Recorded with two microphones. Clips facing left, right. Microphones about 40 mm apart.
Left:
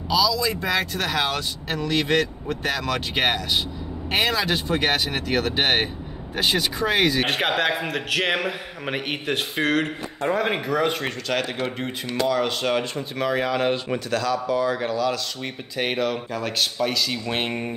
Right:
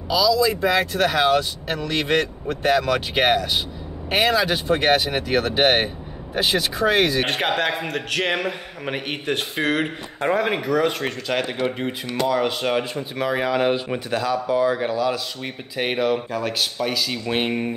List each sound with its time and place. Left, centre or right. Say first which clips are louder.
0.1 s a man's voice: right 3 dB; centre
10.2 s speech: right 3 dB; right
10.6 s a man's voice: right 2 dB; centre